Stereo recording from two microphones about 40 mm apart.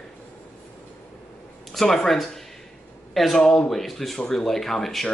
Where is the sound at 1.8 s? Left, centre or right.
Centre.